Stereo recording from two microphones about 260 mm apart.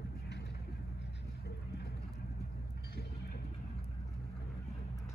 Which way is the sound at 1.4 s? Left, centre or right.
Left.